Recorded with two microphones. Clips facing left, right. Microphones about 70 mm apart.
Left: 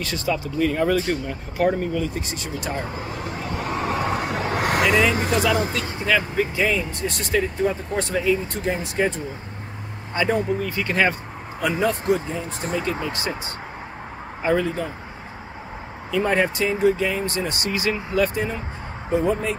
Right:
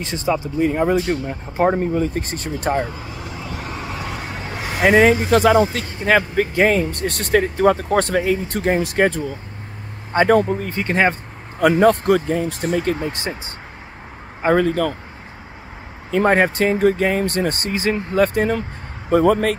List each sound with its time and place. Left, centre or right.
0.0 s speech: right
3.1 s vehicle: left
4.8 s speech: right
11.6 s speech: right
13.3 s speech: right
14.4 s speech: right
16.1 s speech: right